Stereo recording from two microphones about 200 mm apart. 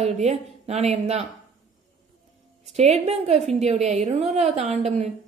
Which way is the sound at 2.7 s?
30° right (ahead or behind).